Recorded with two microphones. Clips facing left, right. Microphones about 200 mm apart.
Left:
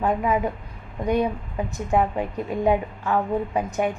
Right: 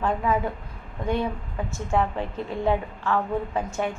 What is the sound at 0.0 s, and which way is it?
A woman's voice, 15° left (ahead or behind).